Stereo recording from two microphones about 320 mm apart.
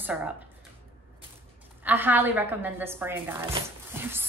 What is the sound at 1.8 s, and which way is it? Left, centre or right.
A woman's voice, centre.